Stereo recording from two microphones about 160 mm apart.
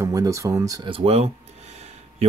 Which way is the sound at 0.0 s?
20° right (ahead or behind).